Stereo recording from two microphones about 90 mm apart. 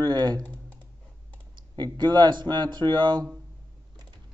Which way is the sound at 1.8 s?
55° right (ahead or behind).